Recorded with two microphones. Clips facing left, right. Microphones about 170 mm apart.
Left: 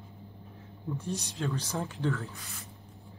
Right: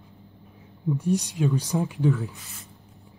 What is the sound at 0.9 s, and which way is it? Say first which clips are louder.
A woman's voice: right 11 dB; 15° right (ahead or behind).